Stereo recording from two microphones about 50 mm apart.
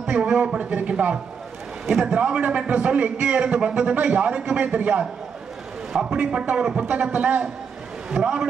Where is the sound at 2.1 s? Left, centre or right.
Right.